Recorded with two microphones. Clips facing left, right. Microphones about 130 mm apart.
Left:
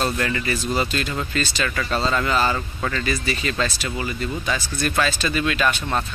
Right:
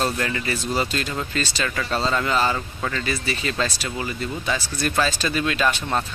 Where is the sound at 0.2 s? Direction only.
25° right (ahead or behind).